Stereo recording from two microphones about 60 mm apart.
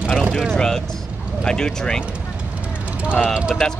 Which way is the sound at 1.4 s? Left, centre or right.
Centre.